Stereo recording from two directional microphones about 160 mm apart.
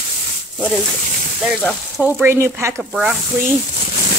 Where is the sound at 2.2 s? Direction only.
15° right (ahead or behind).